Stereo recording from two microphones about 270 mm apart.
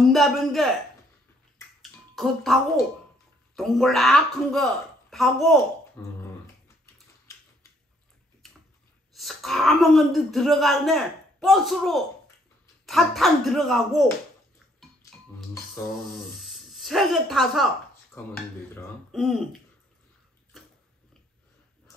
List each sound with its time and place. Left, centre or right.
0.1 s speech: centre
1.8 s a sound: centre
3.5 s speech: centre
9.1 s speech: centre
16.1 s speech: centre